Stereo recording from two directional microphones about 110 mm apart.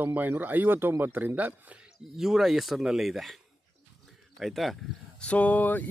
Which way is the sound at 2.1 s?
5° right (ahead or behind).